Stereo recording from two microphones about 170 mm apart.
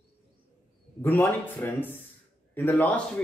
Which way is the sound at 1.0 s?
10° left (ahead or behind).